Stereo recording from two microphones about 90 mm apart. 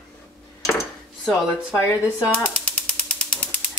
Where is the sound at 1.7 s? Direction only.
30° left (ahead or behind).